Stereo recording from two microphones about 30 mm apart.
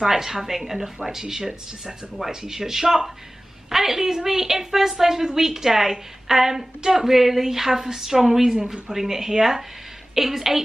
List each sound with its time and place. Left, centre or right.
0.0 s a woman's voice: centre